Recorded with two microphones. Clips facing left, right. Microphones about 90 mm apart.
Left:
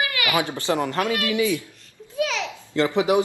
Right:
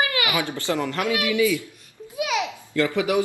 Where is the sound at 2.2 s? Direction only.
15° right (ahead or behind).